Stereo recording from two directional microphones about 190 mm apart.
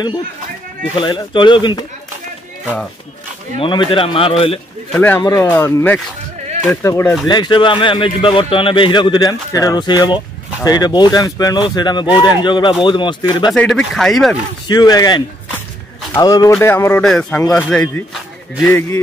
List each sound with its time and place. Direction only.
1.0 s speech: 25° left (ahead or behind)
3.5 s speech: 25° left (ahead or behind)
4.9 s speech: 10° left (ahead or behind)
13.5 s speech: 5° left (ahead or behind)
14.7 s a man's voice: 20° left (ahead or behind)